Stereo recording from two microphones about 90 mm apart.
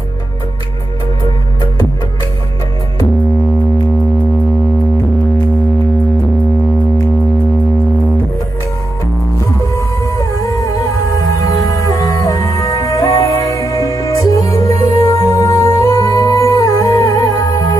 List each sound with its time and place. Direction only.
9.8 s music: 40° left (ahead or behind)